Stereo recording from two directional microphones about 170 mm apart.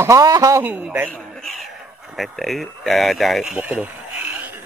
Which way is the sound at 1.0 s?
Centre (ahead or behind).